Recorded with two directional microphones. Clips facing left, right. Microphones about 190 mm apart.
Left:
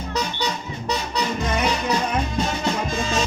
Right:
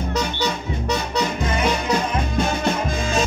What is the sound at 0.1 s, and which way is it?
Music, 50° right (ahead or behind).